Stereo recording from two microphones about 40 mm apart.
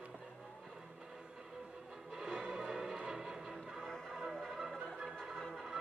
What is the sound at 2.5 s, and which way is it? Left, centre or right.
Music, centre.